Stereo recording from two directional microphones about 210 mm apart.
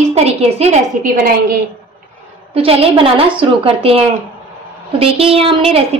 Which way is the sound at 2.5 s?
25° right (ahead or behind).